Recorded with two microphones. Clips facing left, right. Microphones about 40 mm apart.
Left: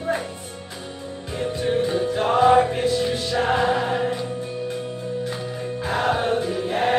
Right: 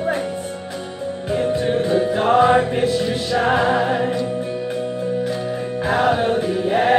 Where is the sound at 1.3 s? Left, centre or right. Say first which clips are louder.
Right 4 dB; centre.